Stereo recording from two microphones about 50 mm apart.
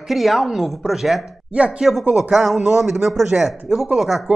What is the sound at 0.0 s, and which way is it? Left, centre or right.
Speech, centre.